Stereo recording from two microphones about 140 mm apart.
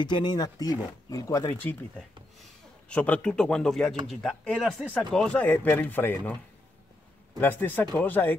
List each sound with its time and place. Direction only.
0.0 s speech: 30° left (ahead or behind); by 8.4 s 15° left (ahead or behind)